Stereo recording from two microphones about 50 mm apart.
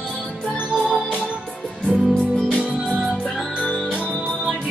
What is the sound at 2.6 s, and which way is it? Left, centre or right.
Music, right.